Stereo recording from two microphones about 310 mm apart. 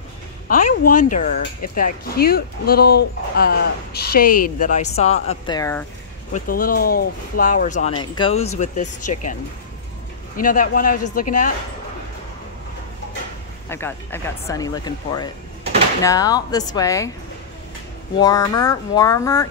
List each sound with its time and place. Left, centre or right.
0.5 s speech: left
1.0 s speech: left; by 5.9 s centre
6.3 s speech: left
13.7 s speech: centre
18.2 s speech: centre